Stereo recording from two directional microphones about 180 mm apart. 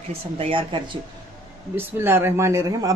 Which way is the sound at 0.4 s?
30° right (ahead or behind).